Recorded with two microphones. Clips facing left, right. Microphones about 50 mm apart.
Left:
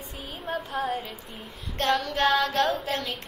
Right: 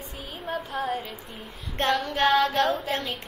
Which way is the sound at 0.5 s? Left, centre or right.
Centre.